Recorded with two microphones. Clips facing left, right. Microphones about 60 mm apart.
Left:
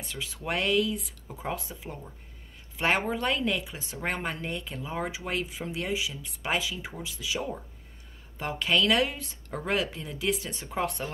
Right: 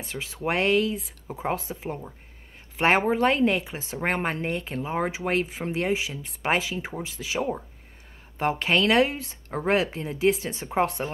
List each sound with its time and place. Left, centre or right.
0.0 s speech: right